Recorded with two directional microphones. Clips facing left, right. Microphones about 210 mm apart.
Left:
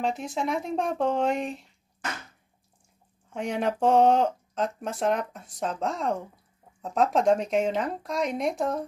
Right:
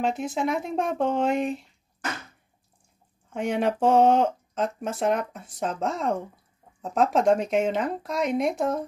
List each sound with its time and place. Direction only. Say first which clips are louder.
0.0 s speech: right 3 dB; centre (ahead or behind)
3.3 s speech: right 3 dB; centre (ahead or behind)